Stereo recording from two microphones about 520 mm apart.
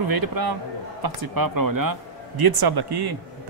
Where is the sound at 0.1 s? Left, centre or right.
Right.